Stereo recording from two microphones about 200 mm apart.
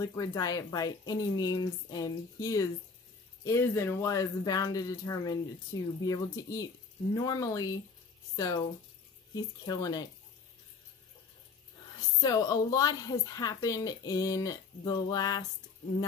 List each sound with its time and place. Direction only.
0.0 s a woman's voice: 15° left (ahead or behind)
12.2 s a woman's voice: 20° left (ahead or behind)